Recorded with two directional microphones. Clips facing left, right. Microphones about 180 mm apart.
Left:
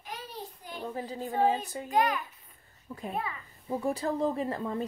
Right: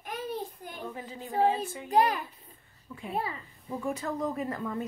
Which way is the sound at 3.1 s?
30° right (ahead or behind).